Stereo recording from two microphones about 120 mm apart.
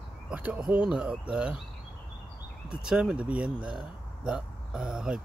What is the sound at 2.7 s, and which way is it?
Speech, 5° right (ahead or behind).